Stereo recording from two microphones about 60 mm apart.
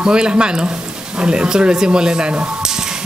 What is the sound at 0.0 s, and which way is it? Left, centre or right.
Speech, centre.